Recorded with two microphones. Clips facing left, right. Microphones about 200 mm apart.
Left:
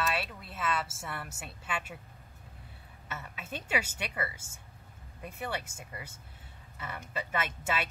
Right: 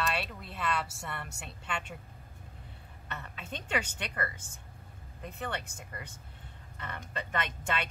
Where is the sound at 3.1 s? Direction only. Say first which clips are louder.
Left 1 dB; 5° left (ahead or behind).